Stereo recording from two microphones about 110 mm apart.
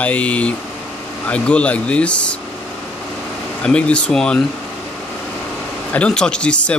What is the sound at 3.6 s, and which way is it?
Speech, 10° left (ahead or behind).